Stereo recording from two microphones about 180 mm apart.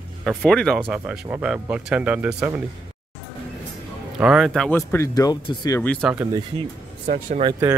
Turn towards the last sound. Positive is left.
turn(degrees=-45)  # may be behind; listen again after turning